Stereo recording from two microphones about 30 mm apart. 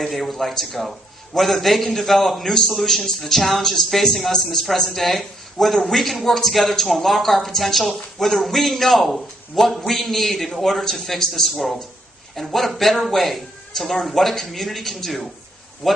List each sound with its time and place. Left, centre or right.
0.0 s a man's voice: centre
9.8 s a man's voice: centre
10.0 s a man's voice: centre
12.4 s a man's voice: centre